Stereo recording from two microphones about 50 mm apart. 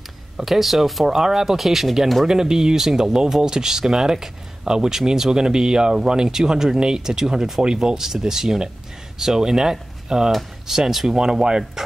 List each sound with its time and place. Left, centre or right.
0.4 s speech: centre
2.2 s speech: centre